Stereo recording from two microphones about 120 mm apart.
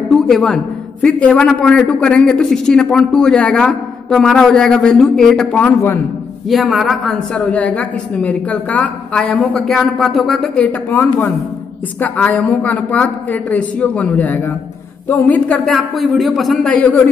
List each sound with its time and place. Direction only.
0.1 s a sound: 5° left (ahead or behind)
1.0 s a woman's voice: 10° left (ahead or behind)
5.7 s a man's voice: 20° left (ahead or behind)
6.5 s a man's voice: centre (ahead or behind)
7.3 s a woman's voice: 10° left (ahead or behind)